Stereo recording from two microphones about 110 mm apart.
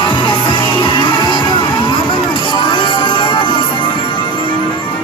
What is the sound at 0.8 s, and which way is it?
Music, 45° left (ahead or behind).